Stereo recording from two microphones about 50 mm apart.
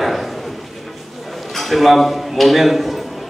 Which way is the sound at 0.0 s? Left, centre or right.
Centre.